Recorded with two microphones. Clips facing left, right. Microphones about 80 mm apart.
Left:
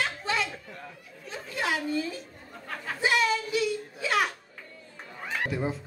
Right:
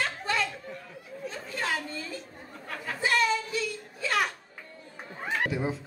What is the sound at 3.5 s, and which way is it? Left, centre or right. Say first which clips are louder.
Whimper: left 5 dB; centre.